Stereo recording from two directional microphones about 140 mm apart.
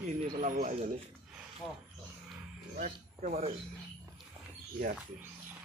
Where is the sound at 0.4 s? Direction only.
60° right (ahead or behind).